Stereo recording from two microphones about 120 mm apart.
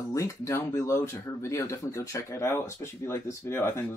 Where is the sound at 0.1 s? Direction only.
25° left (ahead or behind).